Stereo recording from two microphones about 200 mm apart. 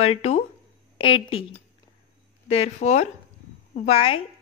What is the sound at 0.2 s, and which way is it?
Speech, 30° left (ahead or behind).